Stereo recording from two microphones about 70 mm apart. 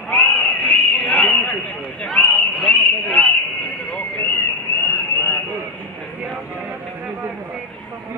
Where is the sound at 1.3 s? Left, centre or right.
Centre.